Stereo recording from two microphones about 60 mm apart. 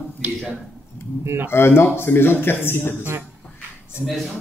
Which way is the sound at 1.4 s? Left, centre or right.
Left.